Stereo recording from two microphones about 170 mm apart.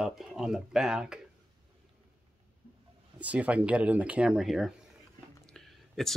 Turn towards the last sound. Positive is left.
turn(degrees=0)  # may be behind; listen again after turning